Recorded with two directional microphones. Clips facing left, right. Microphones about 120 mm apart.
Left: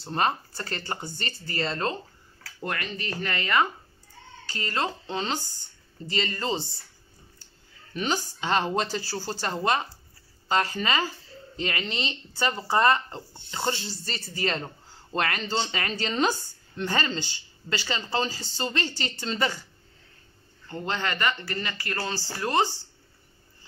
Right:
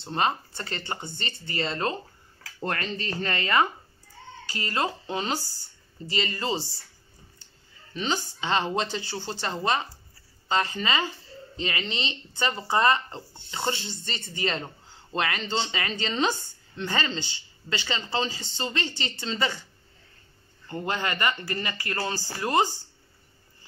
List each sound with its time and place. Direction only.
0.0 s speech: centre (ahead or behind)
1.6 s speech: 5° right (ahead or behind)
2.6 s speech: 30° right (ahead or behind)
4.6 s speech: 10° right (ahead or behind)
8.0 s speech: 10° left (ahead or behind)
17.1 s speech: 45° left (ahead or behind)
17.6 s speech: centre (ahead or behind)
18.7 s speech: 10° right (ahead or behind)
18.9 s speech: 5° left (ahead or behind)
20.6 s speech: 15° right (ahead or behind)